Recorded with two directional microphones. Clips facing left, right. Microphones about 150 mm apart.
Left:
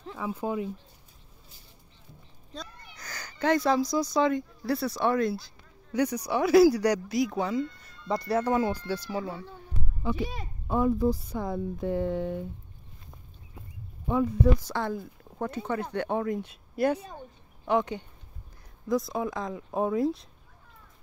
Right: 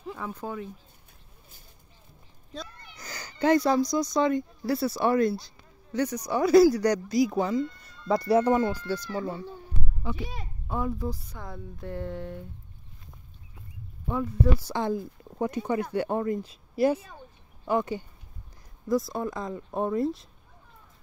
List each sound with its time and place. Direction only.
0.2 s speech: 10° left (ahead or behind)
2.5 s a sound: centre (ahead or behind)
3.1 s speech: 10° right (ahead or behind)
5.9 s speech: 10° left (ahead or behind)
8.3 s speech: 20° right (ahead or behind)
8.5 s speech: 10° left (ahead or behind)
10.7 s a woman's voice: 25° left (ahead or behind)
11.8 s speech: 10° left (ahead or behind)
14.2 s speech: 5° right (ahead or behind)
17.6 s speech: 5° right (ahead or behind)